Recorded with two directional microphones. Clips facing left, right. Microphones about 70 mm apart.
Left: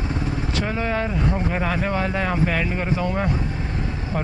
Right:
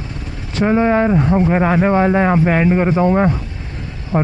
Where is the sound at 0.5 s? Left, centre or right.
Right.